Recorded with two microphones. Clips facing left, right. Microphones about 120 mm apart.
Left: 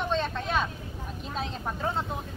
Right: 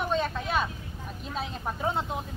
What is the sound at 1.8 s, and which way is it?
Speech, 15° right (ahead or behind).